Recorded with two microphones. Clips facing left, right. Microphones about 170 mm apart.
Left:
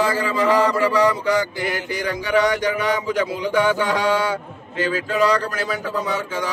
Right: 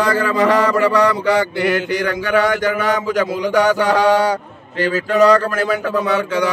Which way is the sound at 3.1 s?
90° right.